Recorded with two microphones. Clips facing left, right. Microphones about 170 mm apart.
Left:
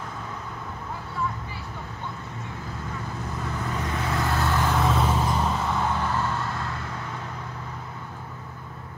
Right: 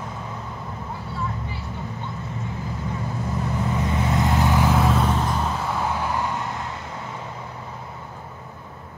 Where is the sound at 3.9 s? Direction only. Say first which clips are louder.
Right 4 dB; 20° right (ahead or behind).